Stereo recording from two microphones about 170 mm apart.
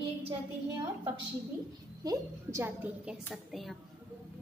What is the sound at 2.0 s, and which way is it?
Speech, 20° right (ahead or behind).